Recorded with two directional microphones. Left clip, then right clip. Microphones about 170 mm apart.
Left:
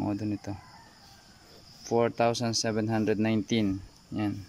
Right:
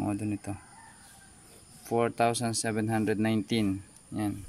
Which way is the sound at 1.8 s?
Centre (ahead or behind).